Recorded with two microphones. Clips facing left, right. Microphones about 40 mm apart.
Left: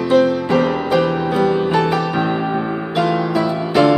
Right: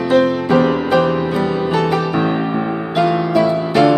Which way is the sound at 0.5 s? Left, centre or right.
Centre.